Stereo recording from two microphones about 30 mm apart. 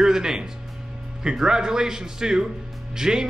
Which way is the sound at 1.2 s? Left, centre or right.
Right.